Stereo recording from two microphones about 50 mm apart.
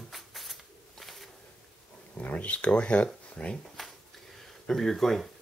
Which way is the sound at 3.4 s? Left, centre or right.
Centre.